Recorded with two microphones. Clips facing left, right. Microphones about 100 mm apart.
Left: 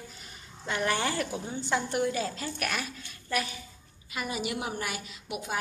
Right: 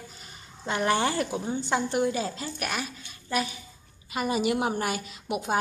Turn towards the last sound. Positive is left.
turn(degrees=-30)  # may be behind; listen again after turning